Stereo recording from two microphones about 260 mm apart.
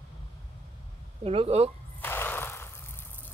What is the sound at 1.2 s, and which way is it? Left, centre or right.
Speech, right.